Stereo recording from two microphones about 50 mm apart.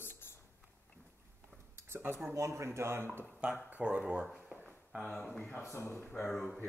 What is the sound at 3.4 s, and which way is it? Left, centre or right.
Speech, right.